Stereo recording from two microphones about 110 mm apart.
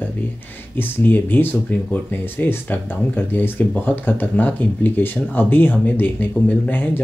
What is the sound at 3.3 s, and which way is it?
Speech, 15° left (ahead or behind).